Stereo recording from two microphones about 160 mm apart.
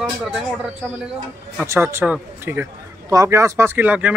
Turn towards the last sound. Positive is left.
turn(degrees=-10)  # may be behind; listen again after turning